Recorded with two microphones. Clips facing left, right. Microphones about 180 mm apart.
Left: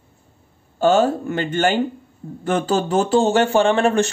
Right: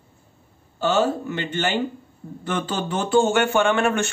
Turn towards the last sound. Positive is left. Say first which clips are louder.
# left 4 dB
turn(degrees=35)  # may be behind; listen again after turning